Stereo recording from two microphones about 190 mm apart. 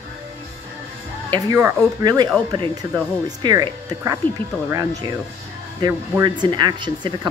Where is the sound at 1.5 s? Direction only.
15° right (ahead or behind).